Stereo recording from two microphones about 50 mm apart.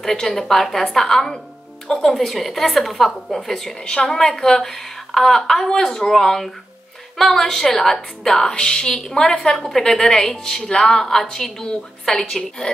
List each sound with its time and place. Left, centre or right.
0.0 s a woman's voice: centre